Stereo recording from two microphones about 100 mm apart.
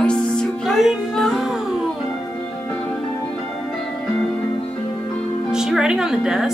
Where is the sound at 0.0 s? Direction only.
10° left (ahead or behind).